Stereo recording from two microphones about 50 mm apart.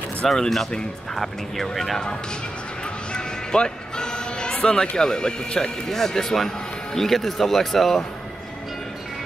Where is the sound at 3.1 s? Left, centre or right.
Centre.